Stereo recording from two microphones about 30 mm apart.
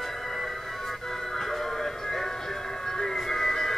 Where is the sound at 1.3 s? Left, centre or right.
Centre.